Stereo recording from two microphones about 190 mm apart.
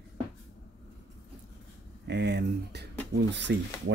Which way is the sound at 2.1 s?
60° right (ahead or behind).